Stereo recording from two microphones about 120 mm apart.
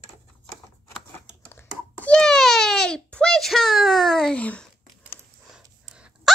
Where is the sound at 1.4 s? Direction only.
15° left (ahead or behind).